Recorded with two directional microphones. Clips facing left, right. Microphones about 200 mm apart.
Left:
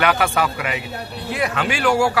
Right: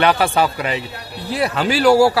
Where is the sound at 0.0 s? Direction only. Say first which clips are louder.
Right 3 dB; 30° right (ahead or behind).